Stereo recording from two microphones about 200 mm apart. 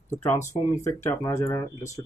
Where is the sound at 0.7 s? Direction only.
15° left (ahead or behind).